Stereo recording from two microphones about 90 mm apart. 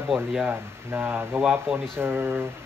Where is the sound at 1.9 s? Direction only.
25° right (ahead or behind).